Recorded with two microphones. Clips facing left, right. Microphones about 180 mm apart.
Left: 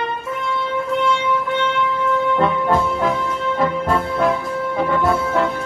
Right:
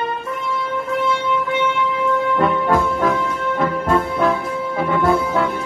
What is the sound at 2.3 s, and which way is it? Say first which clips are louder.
Music: even; centre (ahead or behind).